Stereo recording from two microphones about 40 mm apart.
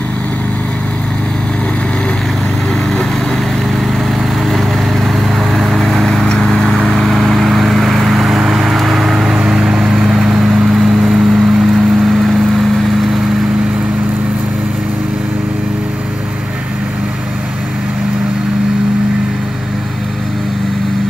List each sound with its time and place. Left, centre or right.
5.0 s vehicle: centre